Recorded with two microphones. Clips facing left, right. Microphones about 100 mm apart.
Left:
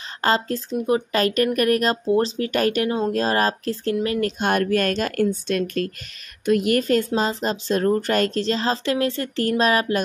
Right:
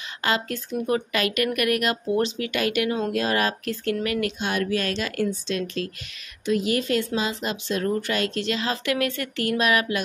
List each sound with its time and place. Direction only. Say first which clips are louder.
0.2 s speech: left 4 dB; 35° left (ahead or behind)
4.4 s a woman's voice: left 5 dB; 50° left (ahead or behind)
6.8 s speech: left 4 dB; 40° left (ahead or behind)